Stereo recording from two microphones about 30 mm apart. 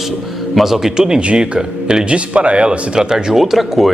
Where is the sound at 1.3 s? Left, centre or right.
Right.